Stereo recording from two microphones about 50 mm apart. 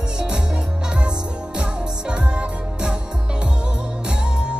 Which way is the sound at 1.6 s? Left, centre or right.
Right.